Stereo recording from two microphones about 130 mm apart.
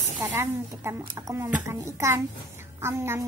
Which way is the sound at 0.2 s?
20° right (ahead or behind).